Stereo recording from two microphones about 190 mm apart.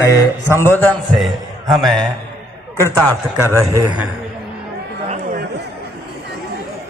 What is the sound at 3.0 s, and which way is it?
Speech, 15° right (ahead or behind).